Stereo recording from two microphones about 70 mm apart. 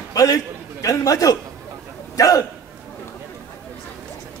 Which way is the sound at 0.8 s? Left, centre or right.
Left.